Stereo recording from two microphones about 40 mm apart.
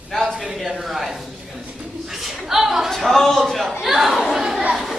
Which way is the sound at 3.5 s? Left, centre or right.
Centre.